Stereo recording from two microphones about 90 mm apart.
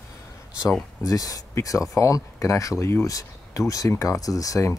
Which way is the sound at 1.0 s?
40° left (ahead or behind).